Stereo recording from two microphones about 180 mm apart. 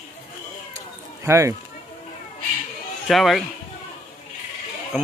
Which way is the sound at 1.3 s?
15° right (ahead or behind).